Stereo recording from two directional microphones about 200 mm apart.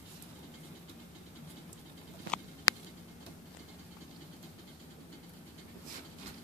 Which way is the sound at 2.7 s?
20° left (ahead or behind).